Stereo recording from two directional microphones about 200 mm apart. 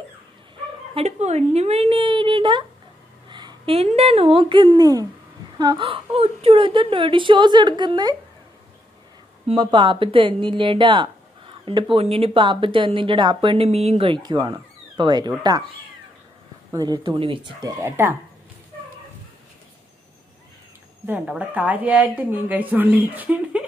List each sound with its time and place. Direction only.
0.9 s a woman's voice: 35° right (ahead or behind)
9.5 s a woman's voice: 25° right (ahead or behind)
16.7 s a woman's voice: 20° right (ahead or behind)
21.1 s speech: 5° right (ahead or behind)